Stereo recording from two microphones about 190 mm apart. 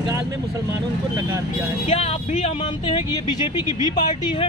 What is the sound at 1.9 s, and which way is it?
Speech, 30° left (ahead or behind).